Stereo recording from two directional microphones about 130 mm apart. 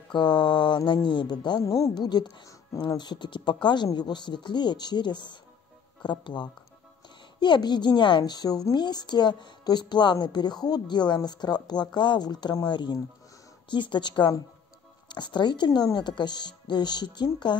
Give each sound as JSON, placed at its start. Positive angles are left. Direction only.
{"t": 0.1, "sound": "a woman's voice", "side_deg": 35}